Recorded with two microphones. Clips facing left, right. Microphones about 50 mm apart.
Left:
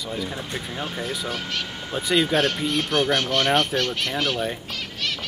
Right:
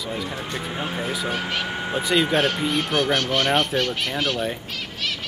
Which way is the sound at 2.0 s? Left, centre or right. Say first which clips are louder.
Even; centre.